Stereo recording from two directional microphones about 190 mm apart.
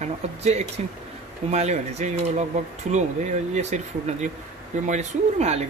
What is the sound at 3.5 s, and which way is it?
Speech, 35° right (ahead or behind).